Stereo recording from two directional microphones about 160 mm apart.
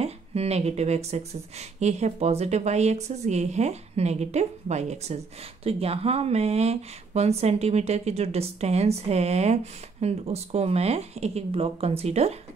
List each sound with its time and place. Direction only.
0.0 s speech: 40° right (ahead or behind)